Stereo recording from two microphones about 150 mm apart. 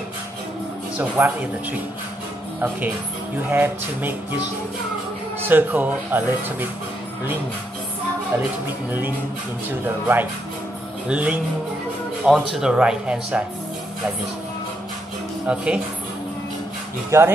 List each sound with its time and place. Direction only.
0.9 s speech: 10° right (ahead or behind)
3.3 s speech: 10° right (ahead or behind)
5.5 s speech: 10° right (ahead or behind)
9.7 s speech: 15° right (ahead or behind)
15.4 s speech: 5° right (ahead or behind)
17.1 s speech: 15° right (ahead or behind)